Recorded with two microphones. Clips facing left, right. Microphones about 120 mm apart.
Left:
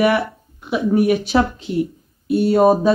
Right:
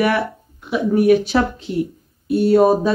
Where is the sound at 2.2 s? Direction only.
5° left (ahead or behind).